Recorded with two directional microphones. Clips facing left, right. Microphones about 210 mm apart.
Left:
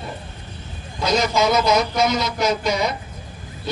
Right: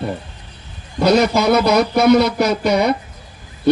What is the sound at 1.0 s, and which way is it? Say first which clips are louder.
A man's voice: right 6 dB; 60° right (ahead or behind).